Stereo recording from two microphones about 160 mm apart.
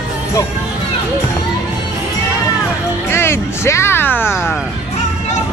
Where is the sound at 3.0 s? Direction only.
15° left (ahead or behind).